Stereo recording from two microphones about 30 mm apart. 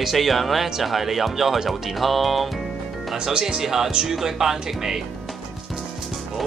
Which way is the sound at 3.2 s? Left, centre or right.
Right.